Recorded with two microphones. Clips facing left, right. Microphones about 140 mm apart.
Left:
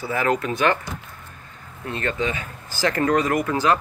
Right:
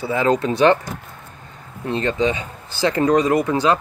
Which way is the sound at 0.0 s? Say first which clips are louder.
Right 4 dB; 25° right (ahead or behind).